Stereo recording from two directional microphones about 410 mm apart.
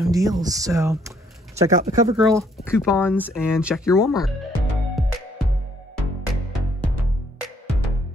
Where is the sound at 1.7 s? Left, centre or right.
Centre.